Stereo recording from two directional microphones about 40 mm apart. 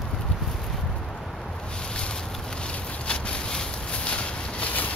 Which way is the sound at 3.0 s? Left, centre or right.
Left.